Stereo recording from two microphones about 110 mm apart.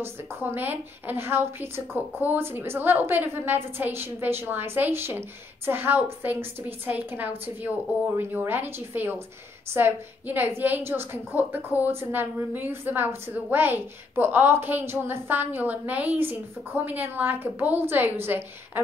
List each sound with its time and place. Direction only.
0.0 s a woman's voice: 20° right (ahead or behind)